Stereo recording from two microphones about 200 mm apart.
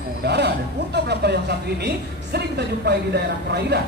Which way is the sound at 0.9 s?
55° right (ahead or behind).